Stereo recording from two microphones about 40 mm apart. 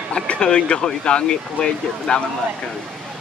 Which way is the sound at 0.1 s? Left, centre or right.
Left.